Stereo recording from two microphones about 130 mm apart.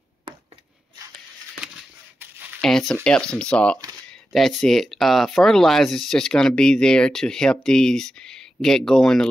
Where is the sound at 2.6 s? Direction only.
5° left (ahead or behind).